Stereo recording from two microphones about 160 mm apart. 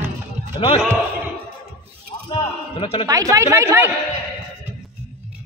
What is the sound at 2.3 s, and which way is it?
Speech, 35° left (ahead or behind).